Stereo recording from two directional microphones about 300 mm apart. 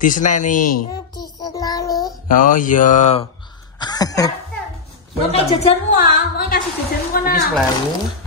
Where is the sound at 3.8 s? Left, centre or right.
Centre.